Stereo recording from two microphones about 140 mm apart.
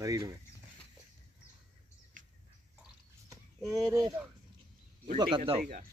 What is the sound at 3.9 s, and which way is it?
Speech, 25° right (ahead or behind).